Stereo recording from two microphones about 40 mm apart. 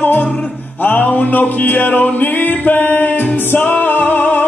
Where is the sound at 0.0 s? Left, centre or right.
Left.